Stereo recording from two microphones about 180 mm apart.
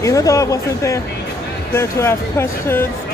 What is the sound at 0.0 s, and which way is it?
Speech, 20° left (ahead or behind).